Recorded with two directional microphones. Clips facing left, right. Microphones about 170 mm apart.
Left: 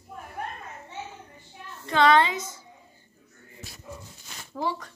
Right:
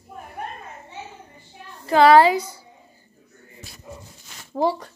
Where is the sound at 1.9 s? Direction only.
35° right (ahead or behind).